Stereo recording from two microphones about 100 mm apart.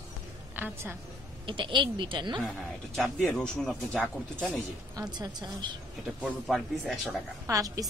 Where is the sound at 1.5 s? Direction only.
55° right (ahead or behind).